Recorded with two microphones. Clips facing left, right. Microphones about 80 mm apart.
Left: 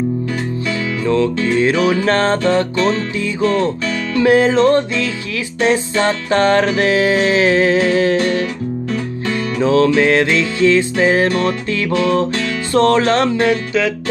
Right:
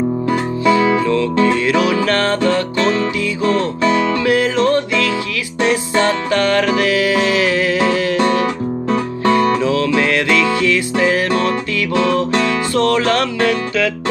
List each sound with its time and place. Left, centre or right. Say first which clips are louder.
1.0 s music: right 1 dB; left
3.4 s music: right 1 dB; right
4.2 s music: left 3 dB; left
9.2 s music: right 11 dB; right
9.6 s music: left 3 dB; left
11.9 s music: even; right
12.7 s music: left 4 dB; left